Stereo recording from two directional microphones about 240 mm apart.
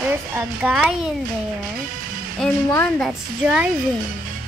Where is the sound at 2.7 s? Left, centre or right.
Centre.